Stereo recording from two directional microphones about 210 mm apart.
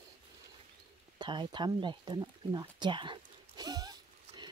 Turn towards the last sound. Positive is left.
turn(degrees=-20)  # may be behind; listen again after turning